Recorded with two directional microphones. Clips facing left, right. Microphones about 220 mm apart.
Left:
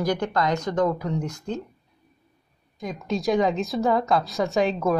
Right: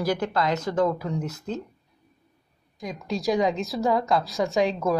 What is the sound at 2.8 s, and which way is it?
A woman's voice, centre (ahead or behind).